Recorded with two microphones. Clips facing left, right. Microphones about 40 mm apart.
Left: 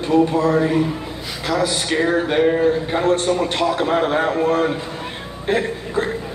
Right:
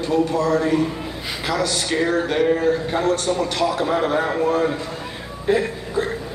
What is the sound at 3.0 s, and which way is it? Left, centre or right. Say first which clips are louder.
A man's voice: left 4 dB; left.